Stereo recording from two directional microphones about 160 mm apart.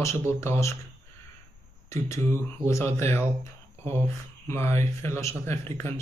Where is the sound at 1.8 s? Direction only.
20° left (ahead or behind).